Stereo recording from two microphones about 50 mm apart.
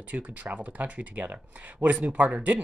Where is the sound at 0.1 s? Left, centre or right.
Right.